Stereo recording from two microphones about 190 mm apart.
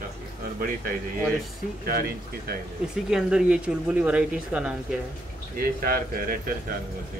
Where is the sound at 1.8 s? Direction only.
50° right (ahead or behind).